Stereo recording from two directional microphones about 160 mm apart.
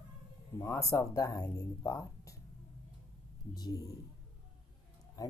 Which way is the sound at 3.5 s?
25° left (ahead or behind).